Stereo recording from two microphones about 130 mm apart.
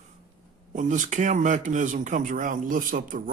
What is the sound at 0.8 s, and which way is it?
Speech, 70° right (ahead or behind).